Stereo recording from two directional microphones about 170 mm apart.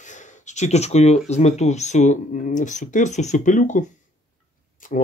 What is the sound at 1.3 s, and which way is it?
Speech, 40° left (ahead or behind).